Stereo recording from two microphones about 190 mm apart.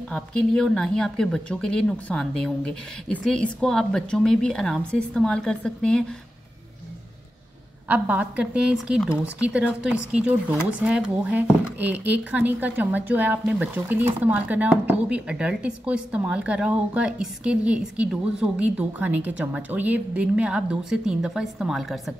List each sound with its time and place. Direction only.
0.1 s speech: 5° left (ahead or behind)
7.9 s speech: 5° right (ahead or behind)